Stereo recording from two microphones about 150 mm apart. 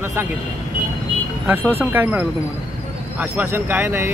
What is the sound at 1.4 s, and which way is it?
Speech, 10° right (ahead or behind).